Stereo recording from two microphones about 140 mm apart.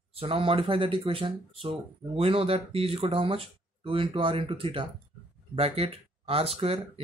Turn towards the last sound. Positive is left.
turn(degrees=-45)  # may be behind; listen again after turning